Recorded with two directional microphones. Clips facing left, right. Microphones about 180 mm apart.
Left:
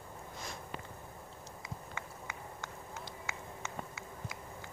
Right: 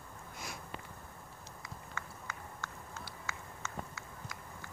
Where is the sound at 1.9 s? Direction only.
15° left (ahead or behind).